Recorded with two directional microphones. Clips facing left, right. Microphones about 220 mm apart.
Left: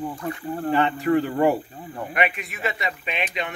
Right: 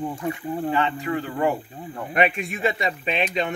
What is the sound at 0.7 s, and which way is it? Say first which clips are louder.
Speech: left 4 dB; 40° left (ahead or behind).